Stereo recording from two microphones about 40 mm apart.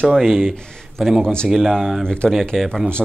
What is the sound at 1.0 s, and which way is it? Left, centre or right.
Speech, centre.